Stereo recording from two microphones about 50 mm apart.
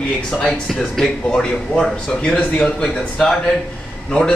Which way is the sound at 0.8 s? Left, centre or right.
Centre.